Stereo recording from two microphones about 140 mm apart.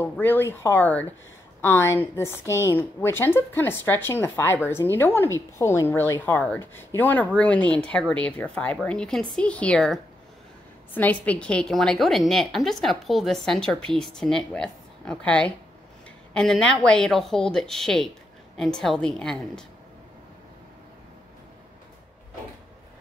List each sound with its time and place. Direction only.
0.0 s speech: 15° left (ahead or behind)
11.0 s a woman's voice: 10° left (ahead or behind)